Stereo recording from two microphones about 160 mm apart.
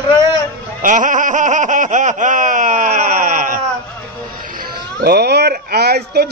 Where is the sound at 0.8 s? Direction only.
50° right (ahead or behind).